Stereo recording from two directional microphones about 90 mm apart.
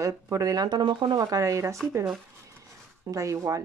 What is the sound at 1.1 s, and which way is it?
Speech, 40° right (ahead or behind).